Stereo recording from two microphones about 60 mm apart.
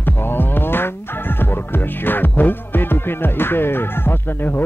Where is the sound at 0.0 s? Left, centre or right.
Left.